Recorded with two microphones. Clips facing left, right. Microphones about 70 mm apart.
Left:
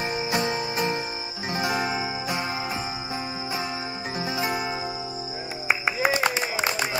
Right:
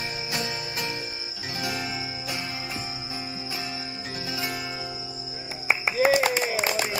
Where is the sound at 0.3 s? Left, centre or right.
Left.